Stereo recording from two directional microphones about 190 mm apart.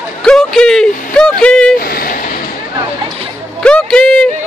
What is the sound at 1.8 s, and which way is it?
Vehicle, 50° left (ahead or behind).